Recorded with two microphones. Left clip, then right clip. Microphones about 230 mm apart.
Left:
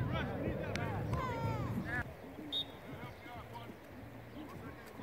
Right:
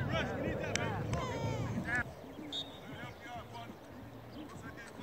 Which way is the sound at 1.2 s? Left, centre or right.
Left.